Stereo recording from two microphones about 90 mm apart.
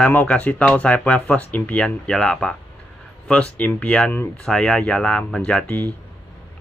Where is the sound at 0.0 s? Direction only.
15° left (ahead or behind).